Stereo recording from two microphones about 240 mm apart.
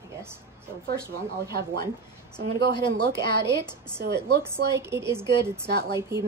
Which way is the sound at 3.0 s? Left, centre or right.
Right.